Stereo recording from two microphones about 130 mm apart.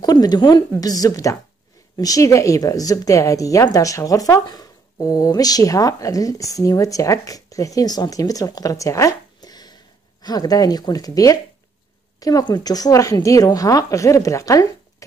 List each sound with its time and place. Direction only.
0.0 s a woman's voice: 30° left (ahead or behind)